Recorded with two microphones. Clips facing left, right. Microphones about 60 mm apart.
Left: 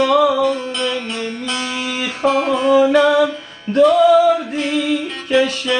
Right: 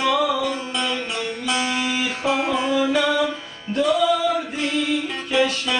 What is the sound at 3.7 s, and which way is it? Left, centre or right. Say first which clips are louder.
Music: left 8 dB; left.